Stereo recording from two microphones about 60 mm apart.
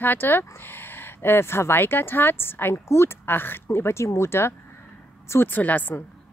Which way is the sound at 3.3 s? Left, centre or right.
Left.